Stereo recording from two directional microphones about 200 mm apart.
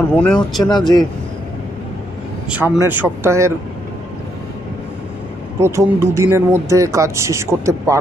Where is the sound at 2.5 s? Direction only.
5° right (ahead or behind).